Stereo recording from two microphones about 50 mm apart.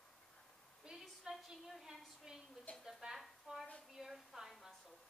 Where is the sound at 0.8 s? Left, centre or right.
Centre.